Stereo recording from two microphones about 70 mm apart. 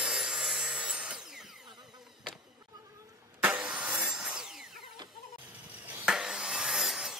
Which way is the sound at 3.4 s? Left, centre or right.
Centre.